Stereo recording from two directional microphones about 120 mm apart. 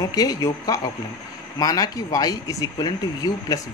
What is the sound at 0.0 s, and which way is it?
Speech, 30° left (ahead or behind).